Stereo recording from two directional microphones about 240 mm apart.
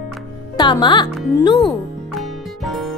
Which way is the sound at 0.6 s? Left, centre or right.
Centre.